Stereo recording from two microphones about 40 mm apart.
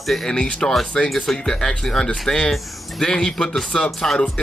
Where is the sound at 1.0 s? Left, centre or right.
Centre.